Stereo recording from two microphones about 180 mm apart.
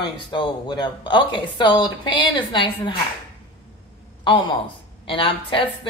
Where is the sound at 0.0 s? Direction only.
25° left (ahead or behind).